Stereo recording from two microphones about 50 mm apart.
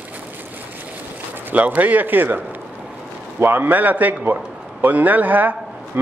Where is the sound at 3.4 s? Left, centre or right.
Right.